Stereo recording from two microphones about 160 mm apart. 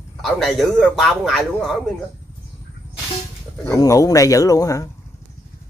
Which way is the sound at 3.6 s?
20° left (ahead or behind).